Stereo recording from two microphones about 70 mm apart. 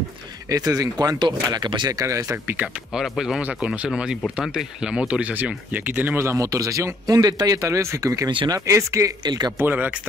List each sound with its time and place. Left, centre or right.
0.5 s speech: right
2.3 s speech: right
2.6 s speech: centre
3.4 s speech: centre
6.1 s speech: right
6.4 s speech: right
7.2 s speech: right
7.5 s speech: right
9.2 s speech: right
9.6 s speech: right